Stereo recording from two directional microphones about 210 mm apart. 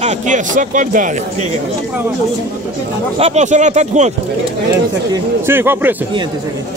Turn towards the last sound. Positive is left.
turn(degrees=-10)  # may be behind; listen again after turning